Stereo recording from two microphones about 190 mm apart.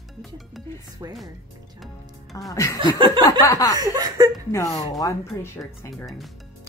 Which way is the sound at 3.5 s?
20° left (ahead or behind).